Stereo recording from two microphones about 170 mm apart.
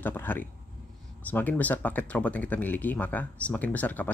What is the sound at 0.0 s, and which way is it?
Speech, 10° left (ahead or behind).